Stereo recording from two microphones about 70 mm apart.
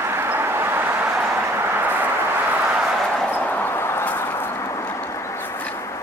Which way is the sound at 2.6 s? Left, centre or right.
Centre.